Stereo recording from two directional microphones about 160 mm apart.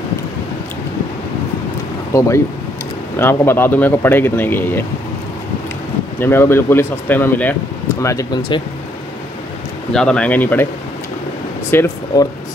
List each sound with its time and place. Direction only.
2.1 s speech: 20° left (ahead or behind)
6.1 s speech: 15° left (ahead or behind)
8.4 s speech: 30° left (ahead or behind)
9.9 s speech: 5° left (ahead or behind)
11.7 s speech: 15° left (ahead or behind)